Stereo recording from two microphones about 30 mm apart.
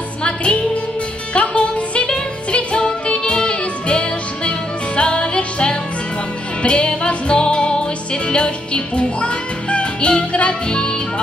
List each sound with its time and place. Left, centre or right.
0.2 s music: left